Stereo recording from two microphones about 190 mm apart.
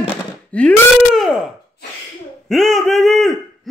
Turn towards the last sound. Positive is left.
turn(degrees=0)  # may be behind; listen again after turning